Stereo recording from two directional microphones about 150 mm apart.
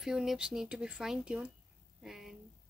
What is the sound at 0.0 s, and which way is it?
Speech, centre (ahead or behind).